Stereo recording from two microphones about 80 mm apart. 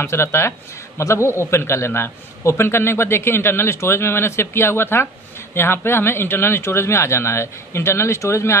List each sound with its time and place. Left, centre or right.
0.0 s a man's voice: left